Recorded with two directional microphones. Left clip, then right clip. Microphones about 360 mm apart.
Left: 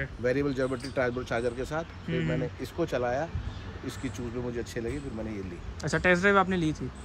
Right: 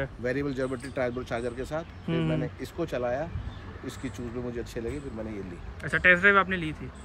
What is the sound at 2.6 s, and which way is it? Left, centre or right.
Speech, centre.